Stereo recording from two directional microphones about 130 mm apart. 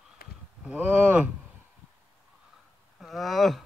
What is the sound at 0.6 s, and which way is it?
Speech, 10° right (ahead or behind).